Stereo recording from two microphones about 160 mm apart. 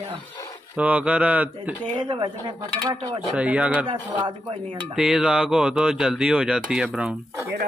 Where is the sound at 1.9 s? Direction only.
30° right (ahead or behind).